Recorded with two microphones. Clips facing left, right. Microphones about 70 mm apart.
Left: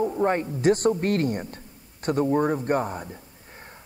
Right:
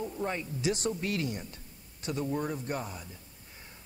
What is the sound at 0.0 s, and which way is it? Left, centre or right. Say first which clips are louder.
A woman's voice: left 11 dB; left.